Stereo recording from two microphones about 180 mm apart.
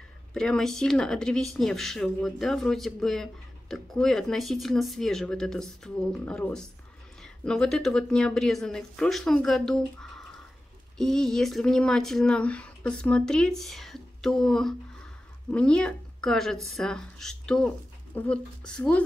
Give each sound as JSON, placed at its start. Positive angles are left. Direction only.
{"t": 0.3, "sound": "speech", "side_deg": 5}